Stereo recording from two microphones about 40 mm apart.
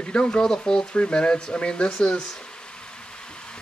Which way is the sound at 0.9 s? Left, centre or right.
Left.